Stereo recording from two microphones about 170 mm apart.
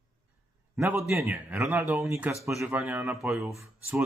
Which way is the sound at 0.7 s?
15° right (ahead or behind).